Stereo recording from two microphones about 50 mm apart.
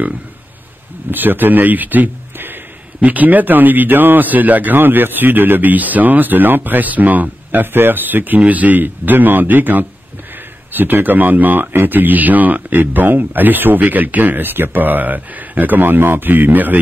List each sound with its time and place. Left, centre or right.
1.1 s a man's voice: right